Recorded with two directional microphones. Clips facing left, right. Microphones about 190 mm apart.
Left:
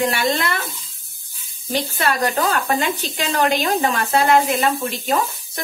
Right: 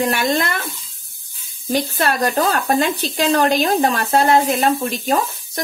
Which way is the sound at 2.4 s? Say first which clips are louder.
Right 3 dB; 40° right (ahead or behind).